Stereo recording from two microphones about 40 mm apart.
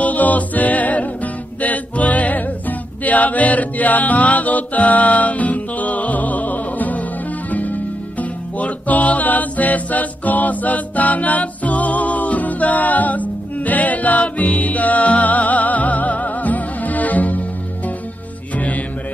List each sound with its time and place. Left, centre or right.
0.0 s music: left